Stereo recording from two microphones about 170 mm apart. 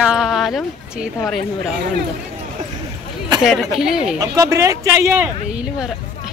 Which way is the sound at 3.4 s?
Centre (ahead or behind).